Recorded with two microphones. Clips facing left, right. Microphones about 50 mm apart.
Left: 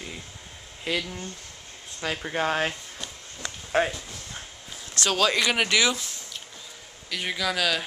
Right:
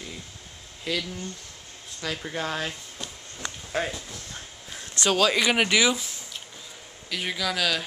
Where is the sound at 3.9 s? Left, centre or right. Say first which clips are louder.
Even; centre.